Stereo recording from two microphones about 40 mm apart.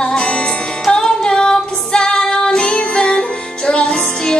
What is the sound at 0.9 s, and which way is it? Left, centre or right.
Female singing, centre.